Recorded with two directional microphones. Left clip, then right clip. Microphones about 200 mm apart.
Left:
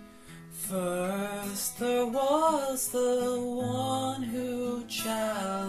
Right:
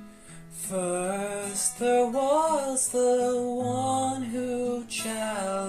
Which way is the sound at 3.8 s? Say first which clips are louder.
Right 4 dB; centre (ahead or behind).